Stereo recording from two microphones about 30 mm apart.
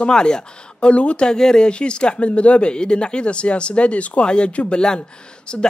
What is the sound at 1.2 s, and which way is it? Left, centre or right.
Speech, left.